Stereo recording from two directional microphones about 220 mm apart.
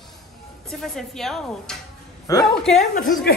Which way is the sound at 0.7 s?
Centre (ahead or behind).